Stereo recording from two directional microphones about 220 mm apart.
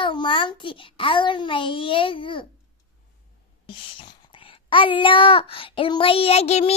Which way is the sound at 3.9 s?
25° left (ahead or behind).